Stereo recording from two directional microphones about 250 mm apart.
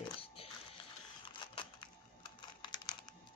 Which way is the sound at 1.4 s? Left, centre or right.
Centre.